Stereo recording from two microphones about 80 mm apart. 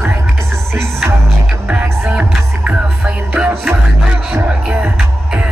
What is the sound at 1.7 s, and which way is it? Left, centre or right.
Music, centre.